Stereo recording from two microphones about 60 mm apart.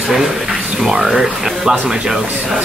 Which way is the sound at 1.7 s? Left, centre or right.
Centre.